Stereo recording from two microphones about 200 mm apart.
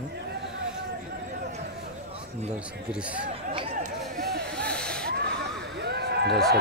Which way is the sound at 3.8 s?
45° right (ahead or behind).